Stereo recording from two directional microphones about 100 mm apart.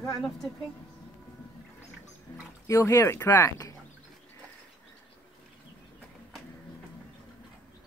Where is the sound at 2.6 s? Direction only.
30° left (ahead or behind).